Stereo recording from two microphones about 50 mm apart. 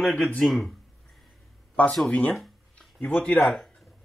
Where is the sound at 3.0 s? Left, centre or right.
Left.